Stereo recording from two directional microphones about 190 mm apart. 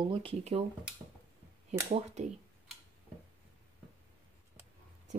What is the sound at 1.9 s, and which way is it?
Speech, 35° right (ahead or behind).